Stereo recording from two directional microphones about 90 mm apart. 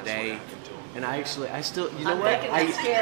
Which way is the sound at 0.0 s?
15° right (ahead or behind).